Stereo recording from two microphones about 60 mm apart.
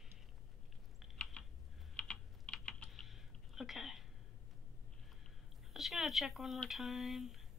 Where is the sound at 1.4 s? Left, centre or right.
Centre.